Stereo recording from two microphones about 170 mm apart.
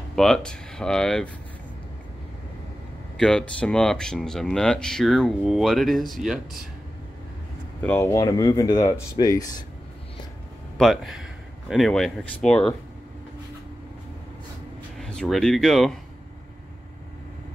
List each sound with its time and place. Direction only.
0.1 s speech: 5° left (ahead or behind)
3.2 s speech: 5° left (ahead or behind)
7.8 s speech: 15° left (ahead or behind)
10.8 s speech: centre (ahead or behind)
15.0 s speech: 5° left (ahead or behind)